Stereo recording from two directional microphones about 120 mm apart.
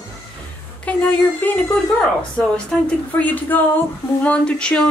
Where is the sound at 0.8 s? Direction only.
15° left (ahead or behind).